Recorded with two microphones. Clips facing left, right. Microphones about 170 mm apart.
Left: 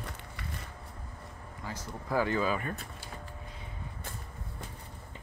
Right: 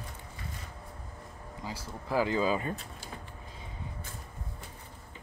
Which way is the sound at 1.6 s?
10° right (ahead or behind).